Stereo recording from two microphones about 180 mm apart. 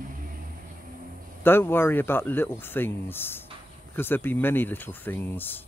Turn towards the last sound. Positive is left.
turn(degrees=10)  # may be behind; listen again after turning